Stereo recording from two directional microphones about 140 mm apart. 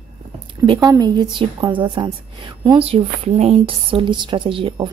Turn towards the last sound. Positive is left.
turn(degrees=-40)  # may be behind; listen again after turning